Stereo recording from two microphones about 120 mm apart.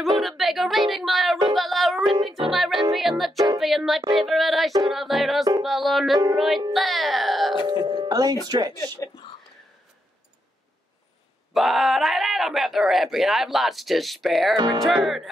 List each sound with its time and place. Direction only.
0.2 s speech: centre (ahead or behind)
1.5 s music: centre (ahead or behind)
7.6 s music: 35° right (ahead or behind)
11.5 s speech: centre (ahead or behind)